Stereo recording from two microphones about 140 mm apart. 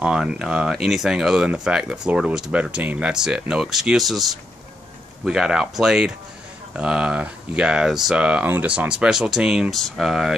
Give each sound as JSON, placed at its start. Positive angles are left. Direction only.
{"t": 0.0, "sound": "speech", "side_deg": -5}